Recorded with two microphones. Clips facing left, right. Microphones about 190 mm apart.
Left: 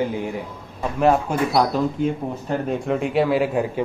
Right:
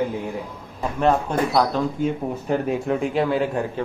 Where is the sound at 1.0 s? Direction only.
10° left (ahead or behind).